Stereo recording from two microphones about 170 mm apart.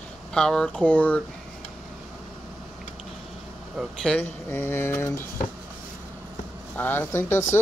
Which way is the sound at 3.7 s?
5° left (ahead or behind).